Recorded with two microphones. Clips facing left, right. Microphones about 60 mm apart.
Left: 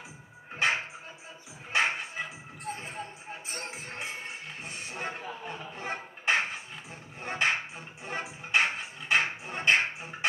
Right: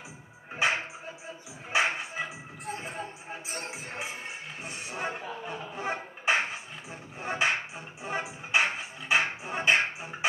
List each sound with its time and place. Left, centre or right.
1.7 s music: centre
4.6 s a sound: centre
7.2 s music: centre